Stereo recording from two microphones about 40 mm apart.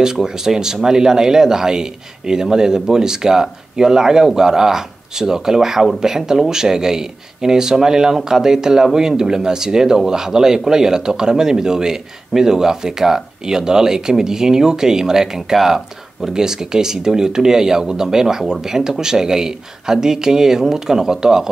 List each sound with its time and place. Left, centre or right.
0.0 s speech: centre